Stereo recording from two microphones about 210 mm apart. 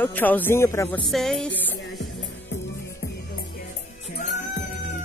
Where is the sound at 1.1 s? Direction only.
Centre (ahead or behind).